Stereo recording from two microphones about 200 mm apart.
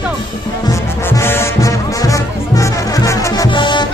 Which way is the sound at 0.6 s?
15° left (ahead or behind).